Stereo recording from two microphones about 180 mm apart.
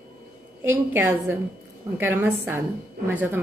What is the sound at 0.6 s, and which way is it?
A woman's voice, 10° right (ahead or behind).